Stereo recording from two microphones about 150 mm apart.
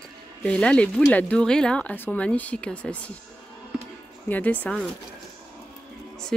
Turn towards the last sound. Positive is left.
turn(degrees=5)  # may be behind; listen again after turning